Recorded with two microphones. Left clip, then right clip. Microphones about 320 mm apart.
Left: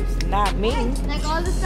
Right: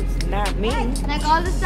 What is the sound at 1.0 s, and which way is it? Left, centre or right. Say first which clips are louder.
Speech: right 6 dB; right.